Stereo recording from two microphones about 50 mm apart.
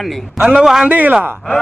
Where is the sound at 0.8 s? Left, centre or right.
Right.